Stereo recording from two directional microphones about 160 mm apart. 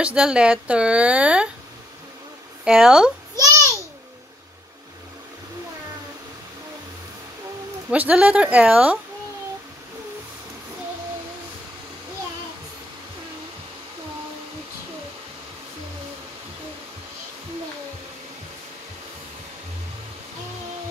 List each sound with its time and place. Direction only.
0.0 s speech: 5° right (ahead or behind)
2.6 s speech: 5° right (ahead or behind)
3.3 s babbling: 20° right (ahead or behind)
7.9 s speech: 10° right (ahead or behind)